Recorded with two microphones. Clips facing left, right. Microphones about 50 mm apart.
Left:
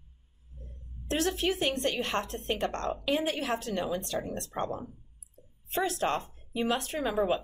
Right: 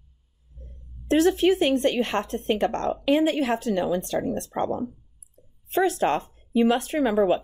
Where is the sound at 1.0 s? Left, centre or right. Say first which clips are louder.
Right 10 dB; right.